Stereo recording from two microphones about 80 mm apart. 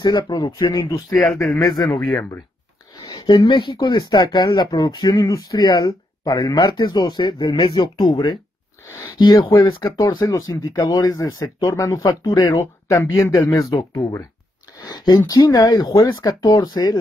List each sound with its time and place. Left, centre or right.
0.0 s speech: left
0.5 s speech: left
1.1 s speech: centre
1.6 s speech: left
3.1 s speech: left
7.6 s speech: left
10.7 s speech: left
12.1 s speech: left
12.5 s speech: left